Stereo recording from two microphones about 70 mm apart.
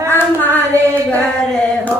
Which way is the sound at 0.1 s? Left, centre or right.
Left.